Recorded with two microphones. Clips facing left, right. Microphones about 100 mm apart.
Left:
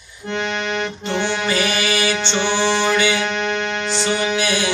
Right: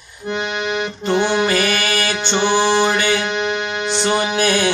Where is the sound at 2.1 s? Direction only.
10° right (ahead or behind).